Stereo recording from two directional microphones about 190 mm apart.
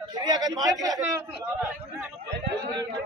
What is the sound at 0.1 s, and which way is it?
Speech, 20° right (ahead or behind).